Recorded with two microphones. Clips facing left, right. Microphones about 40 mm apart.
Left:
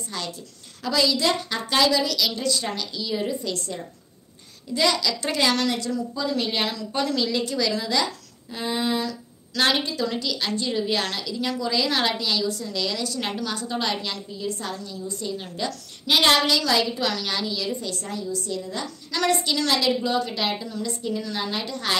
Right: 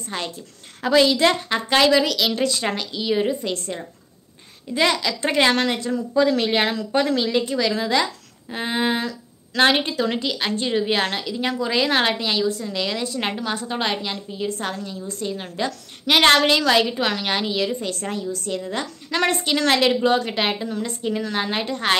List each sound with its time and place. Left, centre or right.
0.1 s a woman's voice: right
2.0 s a woman's voice: right
6.1 s a woman's voice: right
14.4 s a woman's voice: right